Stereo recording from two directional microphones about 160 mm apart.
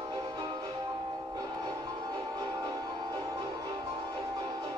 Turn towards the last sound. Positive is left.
turn(degrees=-25)  # may be behind; listen again after turning